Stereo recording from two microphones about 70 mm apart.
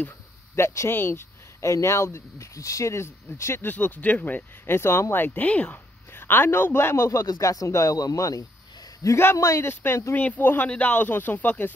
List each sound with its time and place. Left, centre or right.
0.6 s speech: left
3.6 s speech: left
4.7 s a man's voice: left
7.2 s speech: left
9.0 s a man's voice: left
10.1 s speech: left